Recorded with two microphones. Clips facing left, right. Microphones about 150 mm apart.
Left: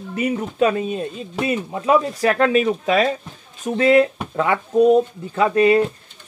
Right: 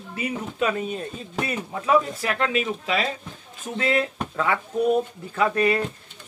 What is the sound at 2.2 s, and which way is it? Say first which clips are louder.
Speech: left 8 dB; 35° left (ahead or behind).